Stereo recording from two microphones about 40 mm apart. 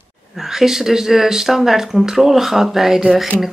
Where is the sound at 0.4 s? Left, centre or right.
Centre.